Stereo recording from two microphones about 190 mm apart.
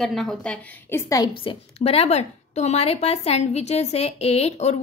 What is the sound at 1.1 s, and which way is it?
A woman's voice, 25° left (ahead or behind).